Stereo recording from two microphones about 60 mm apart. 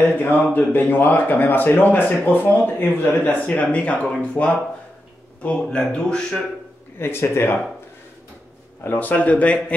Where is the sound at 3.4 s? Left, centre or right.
Centre.